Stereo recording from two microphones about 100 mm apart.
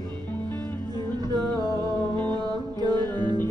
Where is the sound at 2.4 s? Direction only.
45° right (ahead or behind).